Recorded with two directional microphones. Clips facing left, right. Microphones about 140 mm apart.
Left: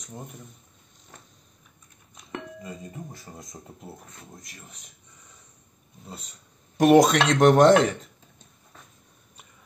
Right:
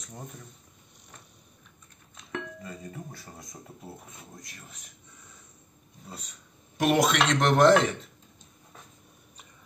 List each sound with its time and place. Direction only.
2.1 s music: 15° left (ahead or behind)
6.8 s speech: 40° left (ahead or behind)